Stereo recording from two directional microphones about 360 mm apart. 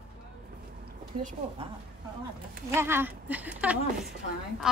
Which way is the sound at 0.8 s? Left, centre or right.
Right.